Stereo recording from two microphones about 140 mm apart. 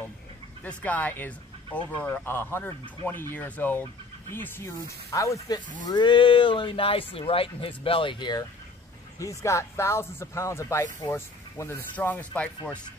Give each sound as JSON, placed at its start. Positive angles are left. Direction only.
{"t": 0.7, "sound": "speech", "side_deg": 10}
{"t": 5.9, "sound": "speech", "side_deg": 35}
{"t": 9.2, "sound": "speech", "side_deg": 20}